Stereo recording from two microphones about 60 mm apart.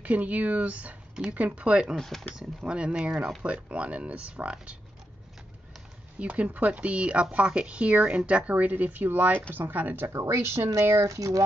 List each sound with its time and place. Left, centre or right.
0.0 s speech: right
2.0 s speech: centre
2.3 s speech: centre
6.1 s speech: right
10.1 s speech: right
11.1 s speech: right